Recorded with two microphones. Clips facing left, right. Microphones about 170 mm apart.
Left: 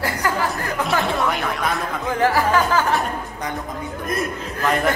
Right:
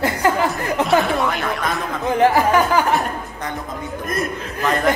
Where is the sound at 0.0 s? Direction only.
20° right (ahead or behind).